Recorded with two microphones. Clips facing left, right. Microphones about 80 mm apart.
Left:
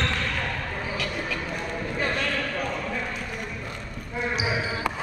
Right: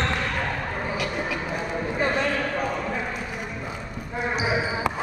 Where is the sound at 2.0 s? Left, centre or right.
Centre.